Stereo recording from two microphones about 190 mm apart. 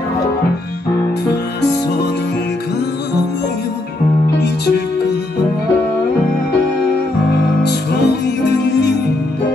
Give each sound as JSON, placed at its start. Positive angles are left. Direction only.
{"t": 7.6, "sound": "music", "side_deg": 60}